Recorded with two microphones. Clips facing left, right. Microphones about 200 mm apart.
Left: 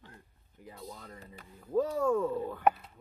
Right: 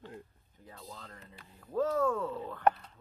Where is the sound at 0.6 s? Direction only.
15° left (ahead or behind).